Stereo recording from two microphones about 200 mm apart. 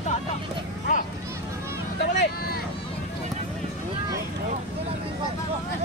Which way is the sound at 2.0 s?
55° left (ahead or behind).